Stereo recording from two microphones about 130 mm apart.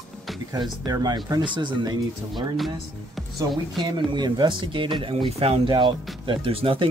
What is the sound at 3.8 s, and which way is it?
Speech, 35° right (ahead or behind).